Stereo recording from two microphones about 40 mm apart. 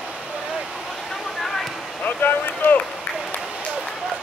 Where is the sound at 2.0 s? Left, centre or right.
Left.